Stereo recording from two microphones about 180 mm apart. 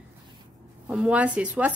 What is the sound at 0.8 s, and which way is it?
Speech, 5° right (ahead or behind).